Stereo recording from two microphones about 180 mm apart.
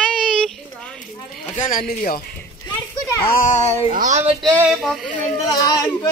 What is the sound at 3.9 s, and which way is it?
Speech, 40° right (ahead or behind).